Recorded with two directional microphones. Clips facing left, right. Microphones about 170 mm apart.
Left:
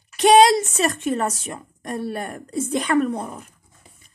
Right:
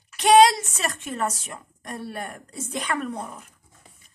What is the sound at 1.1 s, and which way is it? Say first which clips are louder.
A woman's voice: left 4 dB; 40° left (ahead or behind).